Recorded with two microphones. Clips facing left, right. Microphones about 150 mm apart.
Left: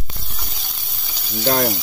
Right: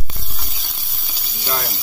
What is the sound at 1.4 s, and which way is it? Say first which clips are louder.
Frying: left 8 dB; 50° left (ahead or behind).